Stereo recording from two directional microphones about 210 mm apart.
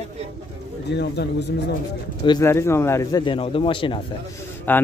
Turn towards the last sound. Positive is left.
turn(degrees=10)  # may be behind; listen again after turning